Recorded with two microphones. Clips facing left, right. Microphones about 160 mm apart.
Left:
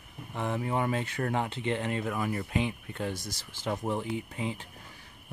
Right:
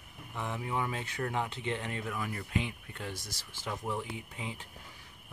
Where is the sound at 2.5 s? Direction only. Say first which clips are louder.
Left 5 dB; 25° left (ahead or behind).